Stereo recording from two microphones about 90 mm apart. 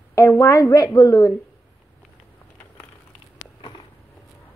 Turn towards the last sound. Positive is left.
turn(degrees=60)  # may be behind; listen again after turning